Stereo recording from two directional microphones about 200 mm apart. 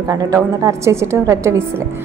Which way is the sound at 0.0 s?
20° right (ahead or behind).